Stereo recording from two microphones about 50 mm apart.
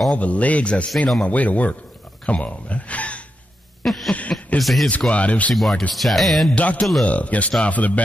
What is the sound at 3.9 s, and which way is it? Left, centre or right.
Music, centre.